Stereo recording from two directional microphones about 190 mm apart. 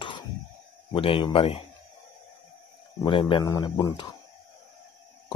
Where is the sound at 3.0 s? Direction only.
25° left (ahead or behind).